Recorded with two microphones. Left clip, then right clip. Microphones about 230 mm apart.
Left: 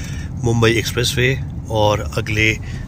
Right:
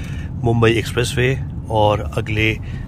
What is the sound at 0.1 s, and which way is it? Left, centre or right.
Speech, centre.